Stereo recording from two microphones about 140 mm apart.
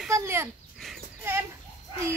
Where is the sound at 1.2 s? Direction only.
15° right (ahead or behind).